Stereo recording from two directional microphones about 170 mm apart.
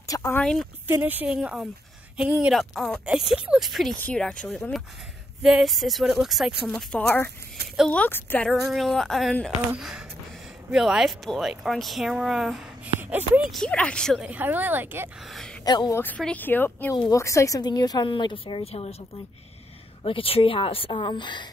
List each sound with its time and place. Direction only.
0.0 s a sound: 15° left (ahead or behind)
0.4 s speech: 5° left (ahead or behind)
0.8 s a woman's voice: 10° right (ahead or behind)
8.0 s speech: 10° left (ahead or behind); by 13.5 s 10° right (ahead or behind)
13.5 s a woman's voice: 5° left (ahead or behind); by 15.0 s 10° right (ahead or behind)
15.2 s speech: centre (ahead or behind)
15.6 s speech: 25° left (ahead or behind)
16.0 s a woman's voice: 10° left (ahead or behind); by 21.5 s 25° left (ahead or behind)